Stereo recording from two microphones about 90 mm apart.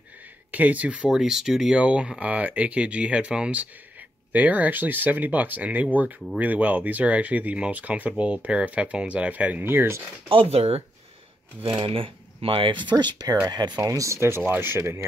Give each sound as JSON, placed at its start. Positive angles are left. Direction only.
{"t": 0.5, "sound": "speech", "side_deg": -15}
{"t": 10.2, "sound": "speech", "side_deg": -80}
{"t": 12.9, "sound": "speech", "side_deg": -50}